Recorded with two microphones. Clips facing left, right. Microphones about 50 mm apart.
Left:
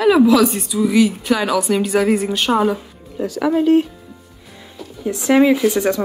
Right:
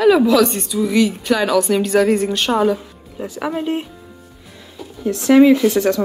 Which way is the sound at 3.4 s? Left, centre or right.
Centre.